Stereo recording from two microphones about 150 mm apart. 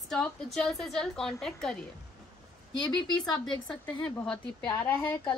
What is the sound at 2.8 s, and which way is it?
Speech, 25° left (ahead or behind).